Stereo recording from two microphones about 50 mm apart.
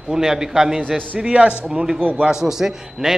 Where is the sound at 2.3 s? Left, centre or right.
Centre.